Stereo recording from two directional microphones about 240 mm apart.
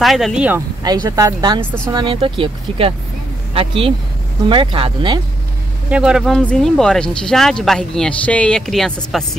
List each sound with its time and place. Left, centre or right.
0.0 s speech: centre
0.8 s speech: centre
5.9 s speech: centre